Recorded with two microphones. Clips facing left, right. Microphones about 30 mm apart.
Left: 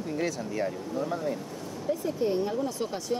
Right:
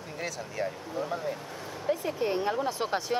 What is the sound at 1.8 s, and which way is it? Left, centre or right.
Speech, right.